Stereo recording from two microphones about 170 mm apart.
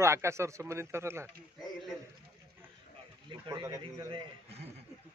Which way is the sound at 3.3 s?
25° right (ahead or behind).